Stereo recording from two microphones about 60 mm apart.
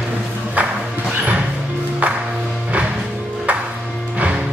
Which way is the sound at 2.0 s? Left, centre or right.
Right.